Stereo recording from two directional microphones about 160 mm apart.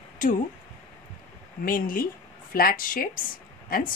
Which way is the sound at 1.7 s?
60° left (ahead or behind).